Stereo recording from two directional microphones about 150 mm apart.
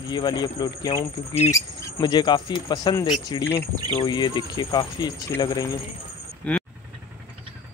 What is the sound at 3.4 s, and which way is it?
Speech, 15° left (ahead or behind).